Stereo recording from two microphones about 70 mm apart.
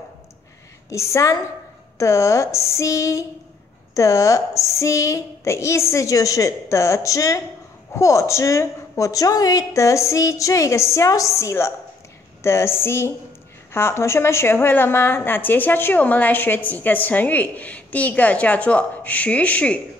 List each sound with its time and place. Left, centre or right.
0.8 s a woman's voice: left; by 19.8 s centre